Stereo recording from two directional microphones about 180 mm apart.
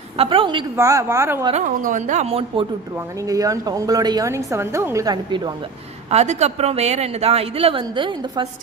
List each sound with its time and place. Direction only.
0.2 s a woman's voice: 30° right (ahead or behind)
0.7 s a woman's voice: 15° right (ahead or behind)
1.5 s speech: 45° right (ahead or behind)
3.3 s a woman's voice: 20° right (ahead or behind)
6.0 s speech: 35° right (ahead or behind)